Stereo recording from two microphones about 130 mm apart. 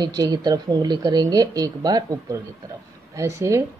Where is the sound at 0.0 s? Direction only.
30° right (ahead or behind).